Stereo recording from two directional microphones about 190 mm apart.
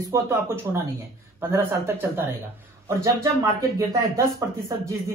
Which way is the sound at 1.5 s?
10° right (ahead or behind).